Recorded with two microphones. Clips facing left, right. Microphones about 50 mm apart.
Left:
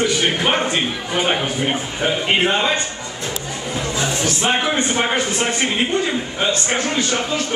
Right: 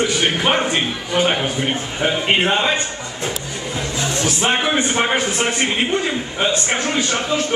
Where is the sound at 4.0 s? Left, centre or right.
Centre.